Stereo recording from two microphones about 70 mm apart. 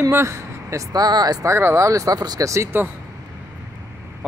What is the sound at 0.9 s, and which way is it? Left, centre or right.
Speech, right.